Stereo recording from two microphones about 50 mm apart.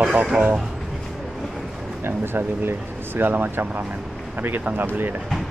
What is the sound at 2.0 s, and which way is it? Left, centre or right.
Speech, right.